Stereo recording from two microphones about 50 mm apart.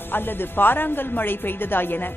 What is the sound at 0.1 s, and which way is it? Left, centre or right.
Speech, left.